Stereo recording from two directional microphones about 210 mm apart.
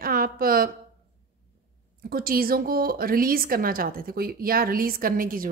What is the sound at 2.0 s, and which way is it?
A woman's voice, 45° right (ahead or behind).